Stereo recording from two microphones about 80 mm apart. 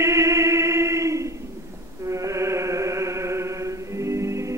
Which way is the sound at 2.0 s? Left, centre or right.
Right.